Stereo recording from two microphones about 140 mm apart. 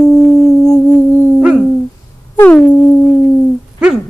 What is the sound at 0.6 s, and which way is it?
Music, 25° left (ahead or behind).